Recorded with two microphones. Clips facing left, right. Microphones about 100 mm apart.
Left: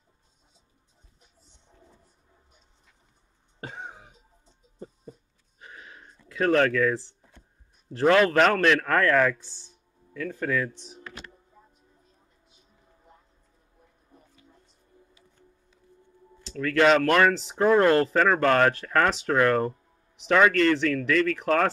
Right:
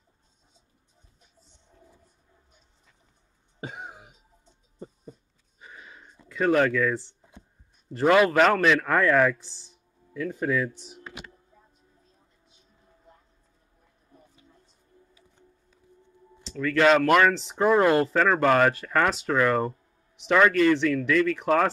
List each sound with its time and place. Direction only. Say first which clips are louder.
3.6 s cough: right 1 dB; 15° right (ahead or behind)
5.6 s sniff: left 1 dB; centre (ahead or behind)
6.2 s a man's voice: even; centre (ahead or behind)
16.4 s speech: even; centre (ahead or behind)